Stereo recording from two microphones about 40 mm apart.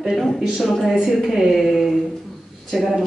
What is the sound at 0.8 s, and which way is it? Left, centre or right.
A woman's voice, centre.